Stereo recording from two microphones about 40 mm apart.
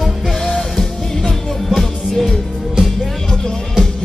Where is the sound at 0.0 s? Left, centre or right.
Centre.